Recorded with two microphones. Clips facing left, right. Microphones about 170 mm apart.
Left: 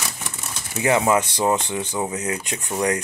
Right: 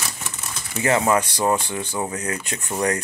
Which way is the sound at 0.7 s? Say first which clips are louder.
Left 1 dB; 15° left (ahead or behind).